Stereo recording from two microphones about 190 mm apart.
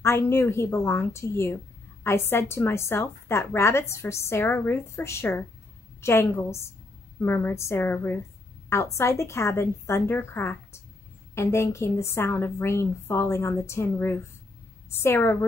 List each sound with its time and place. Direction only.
0.0 s a woman's voice: 15° left (ahead or behind)